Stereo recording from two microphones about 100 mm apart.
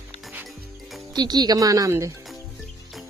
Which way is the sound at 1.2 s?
45° right (ahead or behind).